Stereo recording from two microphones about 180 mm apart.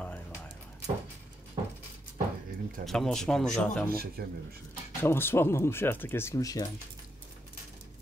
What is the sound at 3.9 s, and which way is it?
Speech, 55° right (ahead or behind).